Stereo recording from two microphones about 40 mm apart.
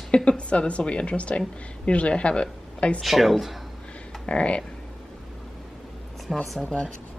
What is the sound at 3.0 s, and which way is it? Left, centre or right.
Speech, centre.